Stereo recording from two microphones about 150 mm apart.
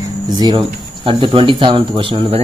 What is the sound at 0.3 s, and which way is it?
Speech, 30° right (ahead or behind).